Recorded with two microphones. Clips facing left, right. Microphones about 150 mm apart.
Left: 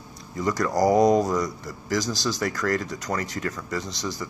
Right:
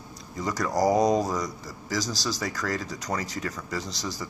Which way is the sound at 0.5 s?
5° right (ahead or behind).